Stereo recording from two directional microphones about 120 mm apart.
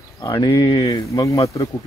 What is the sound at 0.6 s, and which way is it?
Speech, 35° left (ahead or behind).